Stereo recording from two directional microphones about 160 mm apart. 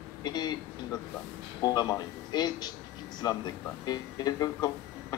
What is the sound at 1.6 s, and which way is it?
Speech, 25° left (ahead or behind).